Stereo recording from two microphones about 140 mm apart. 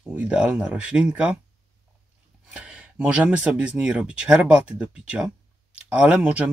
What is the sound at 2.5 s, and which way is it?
Speech, 5° right (ahead or behind).